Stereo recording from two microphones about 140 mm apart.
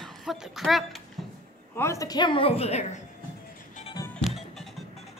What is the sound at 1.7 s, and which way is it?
A woman's voice, 20° left (ahead or behind).